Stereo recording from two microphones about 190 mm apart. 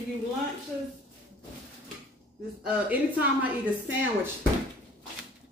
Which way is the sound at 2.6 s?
10° right (ahead or behind).